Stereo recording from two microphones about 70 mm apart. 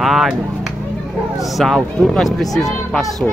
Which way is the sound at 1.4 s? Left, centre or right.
Centre.